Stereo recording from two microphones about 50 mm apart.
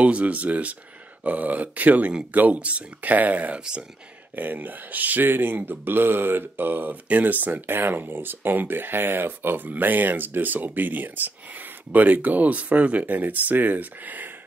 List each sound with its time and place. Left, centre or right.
0.0 s speech: right